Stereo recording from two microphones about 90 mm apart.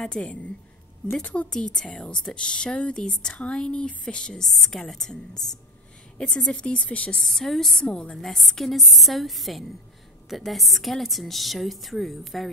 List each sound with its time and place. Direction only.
0.0 s a woman's voice: 10° left (ahead or behind)
7.2 s a woman's voice: 5° left (ahead or behind)